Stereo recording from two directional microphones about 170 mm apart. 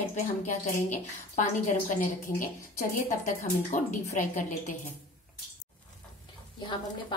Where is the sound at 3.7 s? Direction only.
45° left (ahead or behind).